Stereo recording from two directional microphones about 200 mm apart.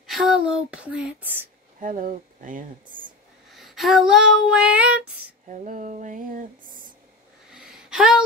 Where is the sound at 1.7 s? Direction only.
40° right (ahead or behind).